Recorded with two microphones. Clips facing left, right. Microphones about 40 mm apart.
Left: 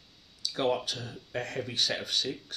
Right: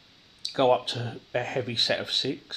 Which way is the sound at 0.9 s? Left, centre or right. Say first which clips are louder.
Right 4 dB; right.